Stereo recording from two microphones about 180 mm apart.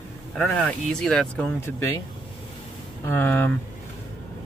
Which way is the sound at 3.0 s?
10° left (ahead or behind).